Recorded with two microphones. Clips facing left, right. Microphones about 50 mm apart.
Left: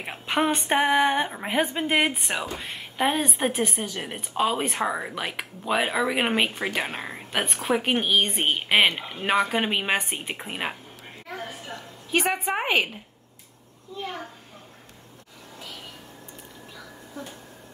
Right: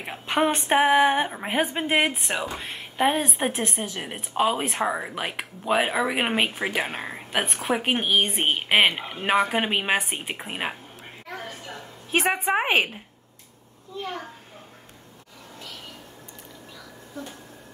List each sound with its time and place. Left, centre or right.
0.0 s a woman's voice: centre
12.6 s a woman's voice: right
13.9 s a woman's voice: centre